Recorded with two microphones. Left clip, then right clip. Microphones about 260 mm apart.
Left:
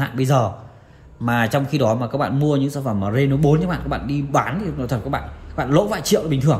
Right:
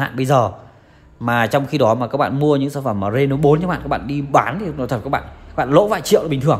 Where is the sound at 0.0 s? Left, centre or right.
Right.